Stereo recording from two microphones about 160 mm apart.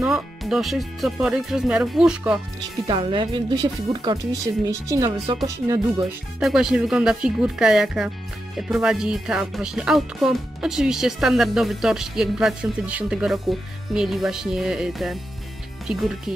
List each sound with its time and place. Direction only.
0.0 s speech: 5° right (ahead or behind)
2.9 s speech: 30° right (ahead or behind)
6.4 s speech: 5° right (ahead or behind)